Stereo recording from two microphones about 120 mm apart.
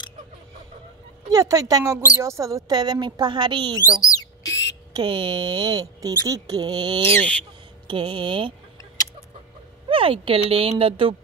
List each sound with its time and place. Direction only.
1.3 s speech: 30° right (ahead or behind)
4.0 s a sound: 30° left (ahead or behind)
4.9 s speech: 40° right (ahead or behind)
7.2 s speech: 10° left (ahead or behind)
7.9 s speech: 40° right (ahead or behind)
9.8 s speech: 50° right (ahead or behind)